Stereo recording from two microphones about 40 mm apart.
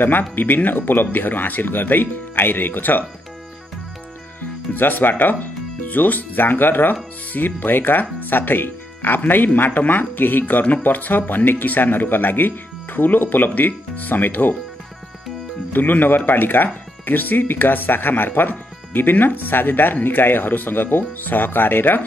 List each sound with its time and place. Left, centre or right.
0.6 s speech: left
4.7 s speech: left
15.7 s speech: left